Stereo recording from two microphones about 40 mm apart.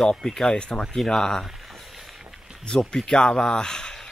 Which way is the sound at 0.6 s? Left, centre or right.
Left.